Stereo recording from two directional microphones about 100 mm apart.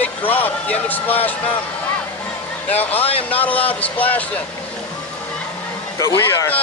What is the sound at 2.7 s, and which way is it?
Speech, 15° left (ahead or behind).